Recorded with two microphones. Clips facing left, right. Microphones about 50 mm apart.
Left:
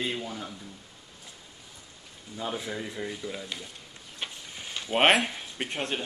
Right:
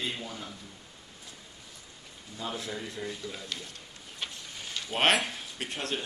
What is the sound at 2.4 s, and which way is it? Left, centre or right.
Speech, centre.